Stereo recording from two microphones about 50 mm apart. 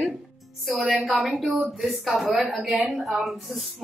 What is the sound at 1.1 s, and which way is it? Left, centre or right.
Speech, centre.